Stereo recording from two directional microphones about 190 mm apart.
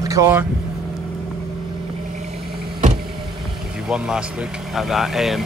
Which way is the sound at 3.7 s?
5° right (ahead or behind).